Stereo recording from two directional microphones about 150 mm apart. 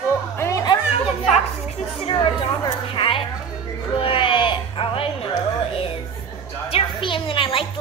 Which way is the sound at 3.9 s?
35° left (ahead or behind).